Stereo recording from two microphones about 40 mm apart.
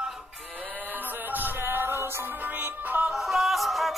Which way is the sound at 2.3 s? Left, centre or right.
Right.